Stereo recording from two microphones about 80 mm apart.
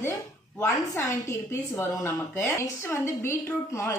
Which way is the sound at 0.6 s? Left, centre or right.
Left.